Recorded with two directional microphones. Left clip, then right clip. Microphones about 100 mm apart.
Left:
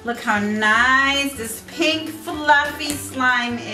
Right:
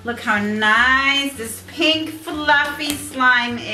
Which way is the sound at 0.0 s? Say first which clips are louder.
Right 1 dB; 10° left (ahead or behind).